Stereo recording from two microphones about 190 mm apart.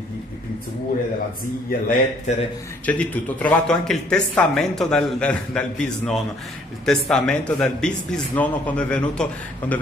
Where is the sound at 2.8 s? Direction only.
5° left (ahead or behind).